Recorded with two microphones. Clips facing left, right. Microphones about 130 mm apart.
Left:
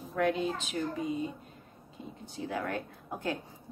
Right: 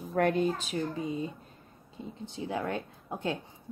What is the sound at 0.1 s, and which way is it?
Speech, 50° right (ahead or behind).